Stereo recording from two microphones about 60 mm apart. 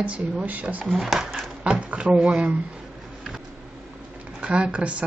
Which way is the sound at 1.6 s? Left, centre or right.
Centre.